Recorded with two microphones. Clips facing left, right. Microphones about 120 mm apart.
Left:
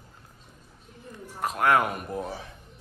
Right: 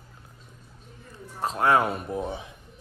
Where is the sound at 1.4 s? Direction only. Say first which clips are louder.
Right 1 dB; 30° right (ahead or behind).